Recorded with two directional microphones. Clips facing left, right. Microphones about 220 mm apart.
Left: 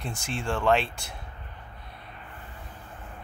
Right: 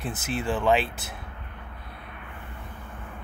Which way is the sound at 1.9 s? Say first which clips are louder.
Right 2 dB; 60° right (ahead or behind).